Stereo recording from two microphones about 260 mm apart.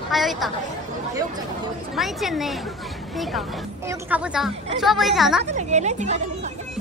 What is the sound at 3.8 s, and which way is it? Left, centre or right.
Speech, centre.